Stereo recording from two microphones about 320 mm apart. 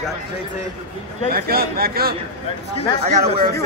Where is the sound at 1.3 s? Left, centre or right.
Right.